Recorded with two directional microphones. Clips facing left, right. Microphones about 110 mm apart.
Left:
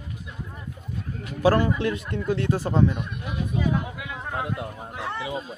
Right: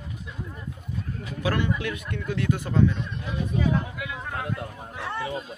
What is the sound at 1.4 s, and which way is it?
A man's voice, 35° left (ahead or behind).